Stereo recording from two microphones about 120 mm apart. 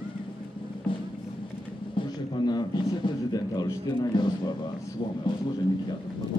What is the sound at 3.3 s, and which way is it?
A man's voice, 35° left (ahead or behind).